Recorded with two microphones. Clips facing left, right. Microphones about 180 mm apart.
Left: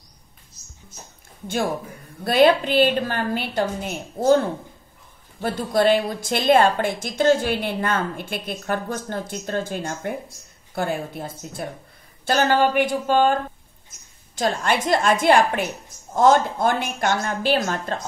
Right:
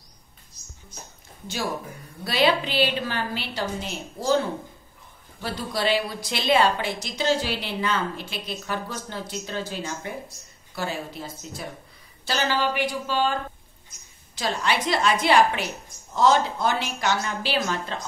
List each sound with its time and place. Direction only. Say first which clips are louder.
2.2 s a woman's voice: left 6 dB; 50° left (ahead or behind)